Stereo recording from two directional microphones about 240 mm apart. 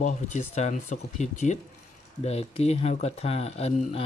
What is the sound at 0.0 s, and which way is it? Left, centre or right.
Speech, left.